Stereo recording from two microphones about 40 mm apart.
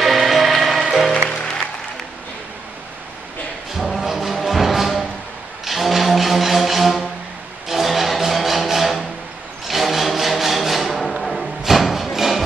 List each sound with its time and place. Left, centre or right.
0.0 s music: centre
1.3 s music: centre
3.7 s music: centre
9.7 s a sound: centre